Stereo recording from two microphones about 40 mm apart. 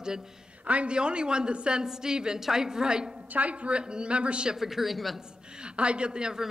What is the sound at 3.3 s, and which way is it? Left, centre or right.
A woman's voice, right.